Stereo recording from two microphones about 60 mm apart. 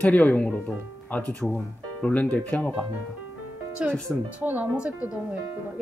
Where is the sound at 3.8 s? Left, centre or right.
Centre.